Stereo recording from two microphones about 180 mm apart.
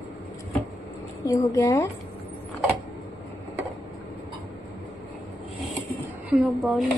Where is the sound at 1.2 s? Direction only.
20° left (ahead or behind).